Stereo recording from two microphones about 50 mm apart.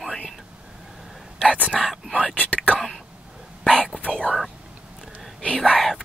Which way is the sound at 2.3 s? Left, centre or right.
Left.